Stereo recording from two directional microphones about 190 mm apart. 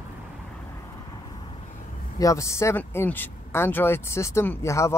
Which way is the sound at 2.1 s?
15° left (ahead or behind).